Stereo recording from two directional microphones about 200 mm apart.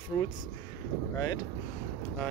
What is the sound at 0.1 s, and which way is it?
Speech, 15° left (ahead or behind).